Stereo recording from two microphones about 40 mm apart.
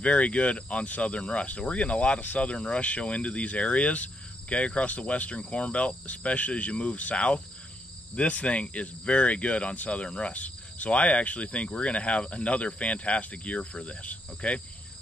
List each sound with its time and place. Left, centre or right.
0.0 s speech: left
10.3 s speech: left
14.0 s insect: left